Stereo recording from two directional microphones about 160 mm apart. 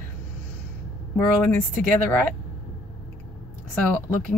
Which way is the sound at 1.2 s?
10° left (ahead or behind).